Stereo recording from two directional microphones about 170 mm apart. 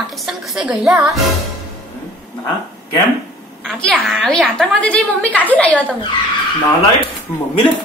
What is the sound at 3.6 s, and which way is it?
A woman's voice, 5° left (ahead or behind).